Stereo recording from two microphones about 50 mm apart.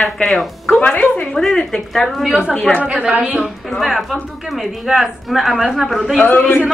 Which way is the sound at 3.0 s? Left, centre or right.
Right.